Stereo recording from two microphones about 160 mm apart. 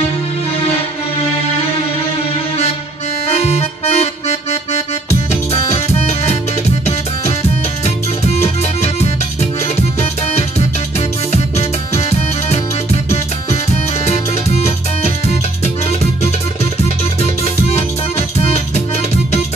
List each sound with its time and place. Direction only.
3.3 s accordion: 45° left (ahead or behind)
5.3 s music: 45° left (ahead or behind)
8.4 s music: 40° left (ahead or behind)
11.5 s music: 45° left (ahead or behind)
14.0 s music: 45° left (ahead or behind)